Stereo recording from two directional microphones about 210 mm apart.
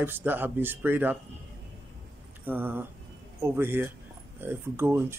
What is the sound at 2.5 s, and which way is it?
Speech, 10° right (ahead or behind).